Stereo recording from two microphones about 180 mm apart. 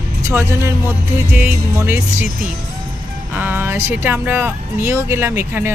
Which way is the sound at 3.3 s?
10° right (ahead or behind).